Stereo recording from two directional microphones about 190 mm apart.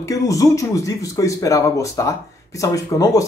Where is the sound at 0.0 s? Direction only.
15° left (ahead or behind).